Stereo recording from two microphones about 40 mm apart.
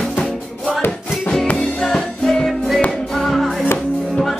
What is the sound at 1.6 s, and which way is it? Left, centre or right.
Music, centre.